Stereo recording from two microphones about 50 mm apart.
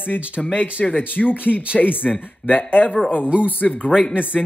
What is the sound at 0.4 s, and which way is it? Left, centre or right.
Speech, centre.